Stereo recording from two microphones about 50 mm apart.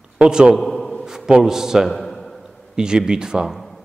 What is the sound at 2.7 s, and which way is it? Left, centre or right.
Speech, centre.